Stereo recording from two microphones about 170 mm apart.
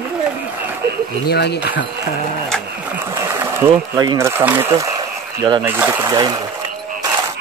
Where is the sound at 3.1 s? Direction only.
15° right (ahead or behind).